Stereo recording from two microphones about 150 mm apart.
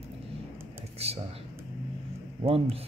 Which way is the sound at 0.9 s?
45° right (ahead or behind).